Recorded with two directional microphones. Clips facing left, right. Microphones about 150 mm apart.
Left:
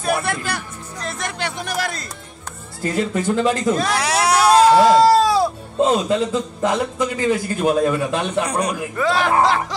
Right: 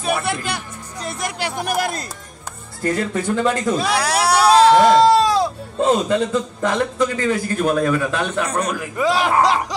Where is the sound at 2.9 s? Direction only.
20° left (ahead or behind).